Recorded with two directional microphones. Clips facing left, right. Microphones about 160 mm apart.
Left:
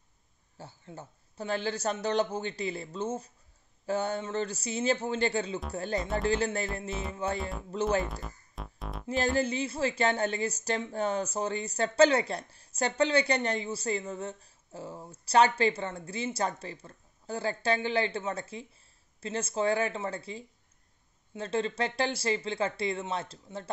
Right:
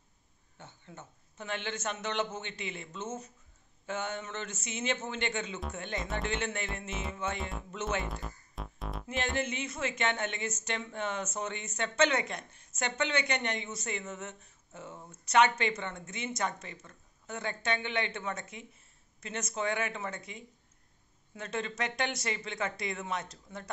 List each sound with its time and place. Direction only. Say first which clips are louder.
0.6 s speech: left 5 dB; 35° left (ahead or behind)
8.0 s music: left 3 dB; centre (ahead or behind)
9.0 s speech: left 6 dB; 35° left (ahead or behind)